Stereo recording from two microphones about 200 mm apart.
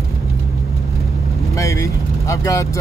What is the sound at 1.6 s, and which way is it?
Speech, 15° left (ahead or behind).